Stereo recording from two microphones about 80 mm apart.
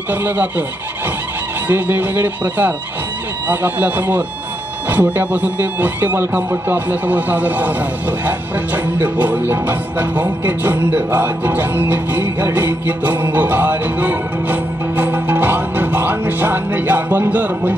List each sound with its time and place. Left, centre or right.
0.1 s music: right
1.7 s music: right